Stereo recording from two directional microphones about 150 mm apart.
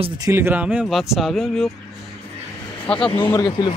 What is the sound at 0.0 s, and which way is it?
Speech, 30° right (ahead or behind).